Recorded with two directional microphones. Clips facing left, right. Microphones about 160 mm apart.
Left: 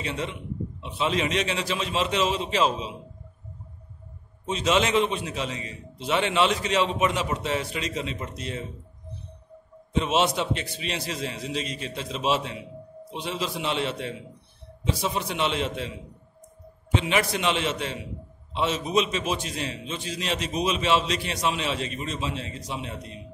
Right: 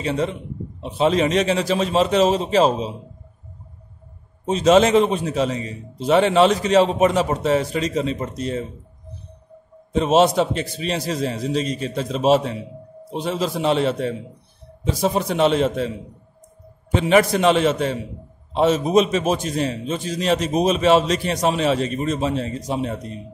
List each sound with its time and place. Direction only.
0.0 s a man's voice: 40° right (ahead or behind)
4.5 s a man's voice: 40° right (ahead or behind)
9.9 s a man's voice: 40° right (ahead or behind)
16.9 s a man's voice: 45° right (ahead or behind)